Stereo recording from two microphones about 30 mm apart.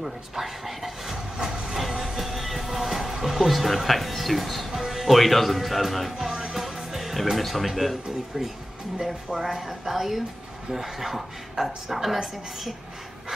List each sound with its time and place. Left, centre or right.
0.0 s a sound: centre
1.1 s train: centre
2.1 s music: centre
4.6 s music: centre
5.1 s speech: centre
6.1 s music: centre
7.3 s speech: centre
9.4 s speech: centre